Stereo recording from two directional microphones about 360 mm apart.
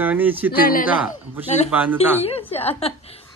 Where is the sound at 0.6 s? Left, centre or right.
Left.